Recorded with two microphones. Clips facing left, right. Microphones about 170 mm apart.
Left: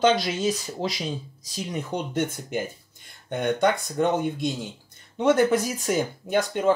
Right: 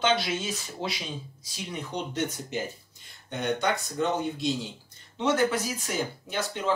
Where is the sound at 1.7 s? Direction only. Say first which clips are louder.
Left 4 dB; 50° left (ahead or behind).